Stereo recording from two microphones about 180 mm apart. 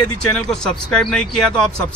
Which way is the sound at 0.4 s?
5° left (ahead or behind).